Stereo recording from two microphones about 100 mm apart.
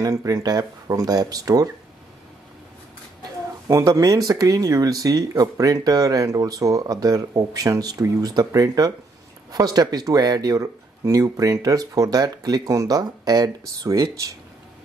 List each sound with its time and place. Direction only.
0.0 s speech: 35° right (ahead or behind)
3.6 s speech: 30° right (ahead or behind)